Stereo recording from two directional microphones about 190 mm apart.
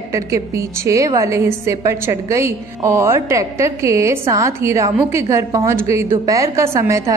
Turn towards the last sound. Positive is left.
turn(degrees=-15)  # may be behind; listen again after turning